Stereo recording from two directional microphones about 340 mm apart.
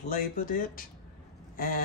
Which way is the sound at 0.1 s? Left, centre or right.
Left.